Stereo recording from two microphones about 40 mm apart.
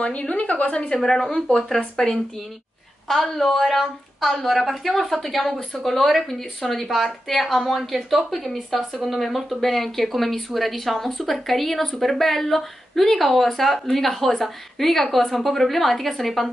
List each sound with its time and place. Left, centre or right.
0.0 s speech: left
0.8 s a woman's voice: centre